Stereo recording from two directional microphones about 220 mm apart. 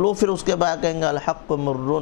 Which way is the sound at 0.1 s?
10° left (ahead or behind).